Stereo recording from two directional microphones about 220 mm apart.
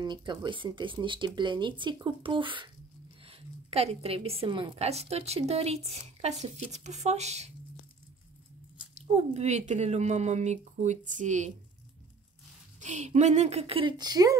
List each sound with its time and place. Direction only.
0.0 s a woman's voice: 20° right (ahead or behind)
8.9 s speech: 30° right (ahead or behind)
12.8 s a woman's voice: 35° right (ahead or behind)